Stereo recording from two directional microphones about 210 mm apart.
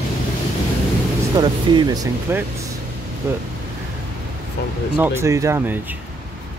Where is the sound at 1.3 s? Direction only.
20° right (ahead or behind).